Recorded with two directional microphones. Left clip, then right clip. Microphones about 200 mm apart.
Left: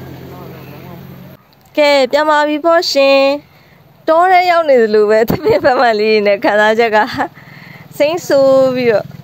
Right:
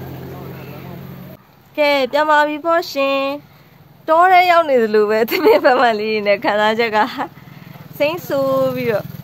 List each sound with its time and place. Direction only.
0.3 s vehicle: 30° left (ahead or behind)
1.8 s a sound: 35° left (ahead or behind)
4.0 s a woman's voice: 25° left (ahead or behind)